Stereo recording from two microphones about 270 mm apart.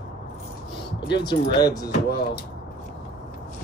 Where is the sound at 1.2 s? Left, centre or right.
Centre.